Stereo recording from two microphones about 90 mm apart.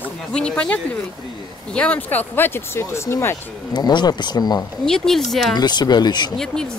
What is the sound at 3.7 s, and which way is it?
Speech, 55° left (ahead or behind).